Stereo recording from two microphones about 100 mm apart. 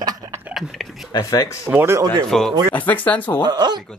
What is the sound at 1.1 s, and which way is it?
Speech, 40° left (ahead or behind).